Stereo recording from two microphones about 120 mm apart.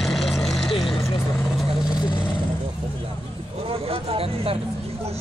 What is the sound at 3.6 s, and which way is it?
Vehicle, 50° right (ahead or behind).